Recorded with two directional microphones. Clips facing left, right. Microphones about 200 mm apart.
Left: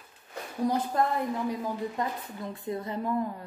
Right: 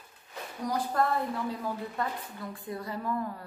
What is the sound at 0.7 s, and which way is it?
A woman's voice, 20° left (ahead or behind).